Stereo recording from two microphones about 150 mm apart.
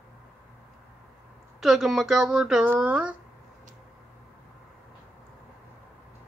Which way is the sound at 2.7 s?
10° right (ahead or behind).